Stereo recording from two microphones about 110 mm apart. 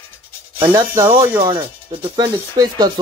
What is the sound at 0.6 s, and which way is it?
Speech, 25° right (ahead or behind).